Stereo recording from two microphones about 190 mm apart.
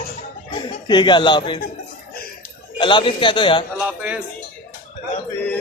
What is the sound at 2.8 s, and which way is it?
Speech, 25° left (ahead or behind).